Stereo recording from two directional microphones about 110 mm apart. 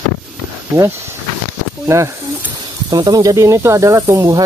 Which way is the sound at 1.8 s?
25° right (ahead or behind).